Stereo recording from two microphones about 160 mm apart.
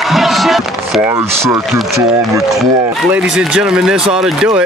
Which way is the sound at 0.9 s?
15° right (ahead or behind).